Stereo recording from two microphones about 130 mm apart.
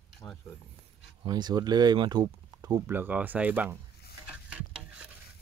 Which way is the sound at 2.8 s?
15° right (ahead or behind).